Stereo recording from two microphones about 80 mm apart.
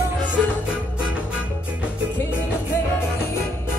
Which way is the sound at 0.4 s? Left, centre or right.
Centre.